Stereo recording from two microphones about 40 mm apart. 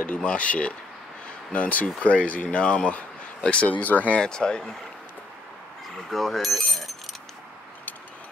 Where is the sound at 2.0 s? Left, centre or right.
Left.